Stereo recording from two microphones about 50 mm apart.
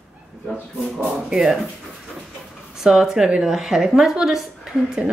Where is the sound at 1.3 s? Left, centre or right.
Centre.